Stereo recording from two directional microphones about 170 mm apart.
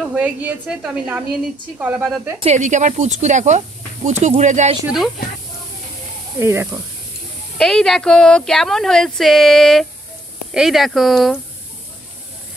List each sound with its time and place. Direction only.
0.0 s speech: 5° right (ahead or behind)
2.4 s speech: 45° right (ahead or behind)
4.8 s speech: centre (ahead or behind)
6.4 s speech: 15° right (ahead or behind)
7.5 s speech: 5° left (ahead or behind)